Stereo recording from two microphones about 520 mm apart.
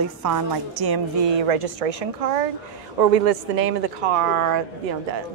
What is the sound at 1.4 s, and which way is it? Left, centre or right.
Speech, right.